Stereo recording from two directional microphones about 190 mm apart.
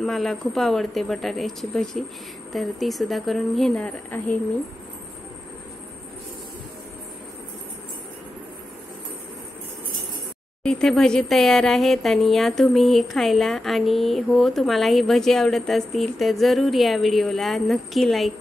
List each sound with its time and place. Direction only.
0.0 s speech: centre (ahead or behind)
10.6 s speech: 5° left (ahead or behind)